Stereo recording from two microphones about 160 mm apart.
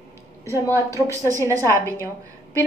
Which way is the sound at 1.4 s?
20° right (ahead or behind).